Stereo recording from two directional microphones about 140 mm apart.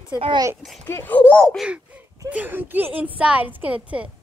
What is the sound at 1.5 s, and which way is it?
Speech, 5° right (ahead or behind).